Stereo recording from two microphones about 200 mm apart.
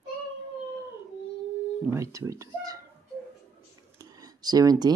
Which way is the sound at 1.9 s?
15° right (ahead or behind).